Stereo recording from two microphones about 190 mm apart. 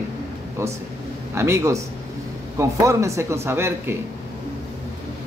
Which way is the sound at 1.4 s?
15° right (ahead or behind).